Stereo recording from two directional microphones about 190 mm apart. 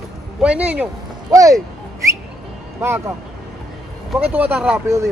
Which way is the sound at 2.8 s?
10° right (ahead or behind).